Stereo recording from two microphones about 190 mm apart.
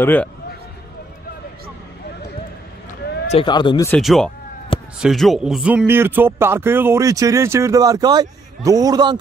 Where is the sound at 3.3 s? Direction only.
25° left (ahead or behind).